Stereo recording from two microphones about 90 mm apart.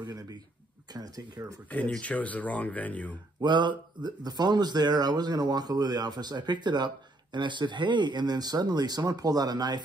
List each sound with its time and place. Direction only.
0.0 s speech: 45° right (ahead or behind)
1.7 s speech: 15° left (ahead or behind)
3.3 s speech: 55° right (ahead or behind)